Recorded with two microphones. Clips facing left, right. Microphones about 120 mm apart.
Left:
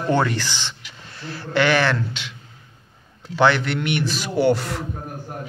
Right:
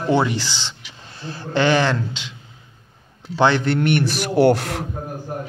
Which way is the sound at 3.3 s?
25° right (ahead or behind).